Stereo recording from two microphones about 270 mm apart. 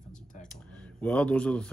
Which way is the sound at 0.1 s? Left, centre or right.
Left.